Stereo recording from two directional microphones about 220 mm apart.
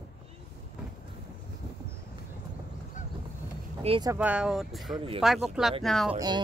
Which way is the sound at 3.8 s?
25° right (ahead or behind).